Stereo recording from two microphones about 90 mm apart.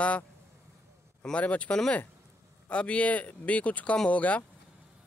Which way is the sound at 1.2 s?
15° left (ahead or behind).